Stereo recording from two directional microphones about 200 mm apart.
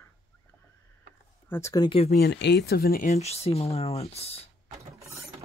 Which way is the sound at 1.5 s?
15° left (ahead or behind).